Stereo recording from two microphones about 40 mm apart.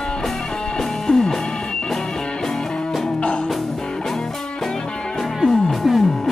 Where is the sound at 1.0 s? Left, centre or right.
Centre.